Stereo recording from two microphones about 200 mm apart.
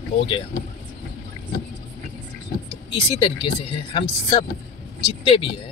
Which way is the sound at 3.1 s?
25° left (ahead or behind).